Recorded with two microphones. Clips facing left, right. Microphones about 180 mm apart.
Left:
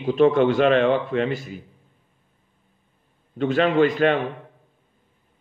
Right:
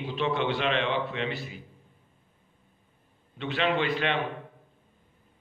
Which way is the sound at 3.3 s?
45° left (ahead or behind).